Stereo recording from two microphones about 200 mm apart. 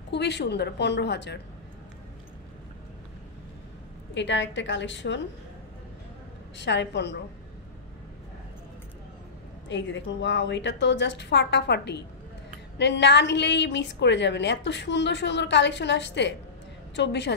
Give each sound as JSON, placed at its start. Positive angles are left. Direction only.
{"t": 0.1, "sound": "a woman's voice", "side_deg": 60}
{"t": 4.1, "sound": "a woman's voice", "side_deg": 65}
{"t": 6.6, "sound": "a woman's voice", "side_deg": 60}
{"t": 9.7, "sound": "a woman's voice", "side_deg": 65}